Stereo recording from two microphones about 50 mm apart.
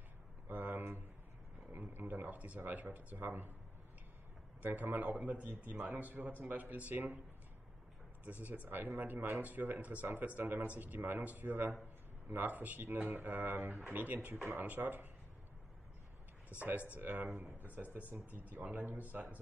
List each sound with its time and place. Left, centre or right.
0.5 s a sound: right
1.7 s speech: right
4.6 s a man's voice: right
8.3 s a man's voice: right
16.5 s speech: left
17.0 s a man's voice: right